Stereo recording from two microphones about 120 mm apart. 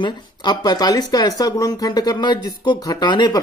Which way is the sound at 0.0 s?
35° left (ahead or behind).